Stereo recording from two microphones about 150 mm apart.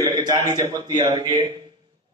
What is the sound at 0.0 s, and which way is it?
A man's voice, 25° right (ahead or behind).